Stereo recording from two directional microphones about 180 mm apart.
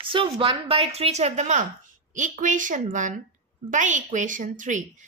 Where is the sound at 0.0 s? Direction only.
30° right (ahead or behind).